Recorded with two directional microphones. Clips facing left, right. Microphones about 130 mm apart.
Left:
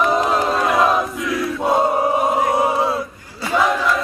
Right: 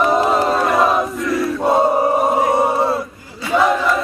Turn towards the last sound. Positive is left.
turn(degrees=0)  # may be behind; listen again after turning